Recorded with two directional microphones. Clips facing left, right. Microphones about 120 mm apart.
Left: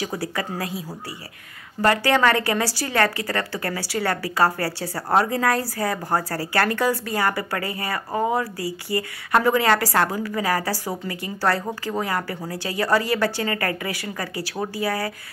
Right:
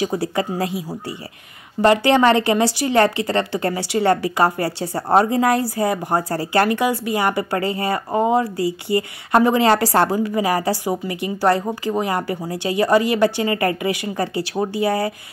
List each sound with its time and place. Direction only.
0.0 s speech: 25° right (ahead or behind)